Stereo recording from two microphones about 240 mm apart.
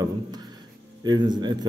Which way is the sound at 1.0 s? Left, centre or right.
Centre.